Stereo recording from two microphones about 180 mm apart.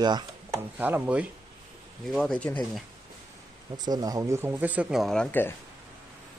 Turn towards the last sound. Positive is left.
turn(degrees=10)  # may be behind; listen again after turning